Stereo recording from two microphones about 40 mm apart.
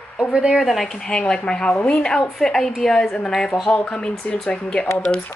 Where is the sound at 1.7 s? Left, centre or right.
Left.